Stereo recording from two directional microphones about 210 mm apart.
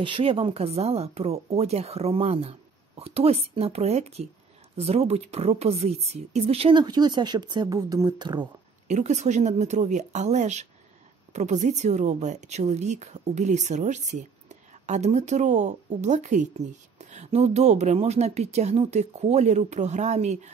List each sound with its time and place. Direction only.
0.0 s speech: 25° right (ahead or behind)
8.8 s a woman's voice: 35° right (ahead or behind)